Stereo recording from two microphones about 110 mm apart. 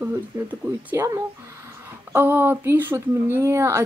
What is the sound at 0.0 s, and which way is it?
Speech, 15° right (ahead or behind).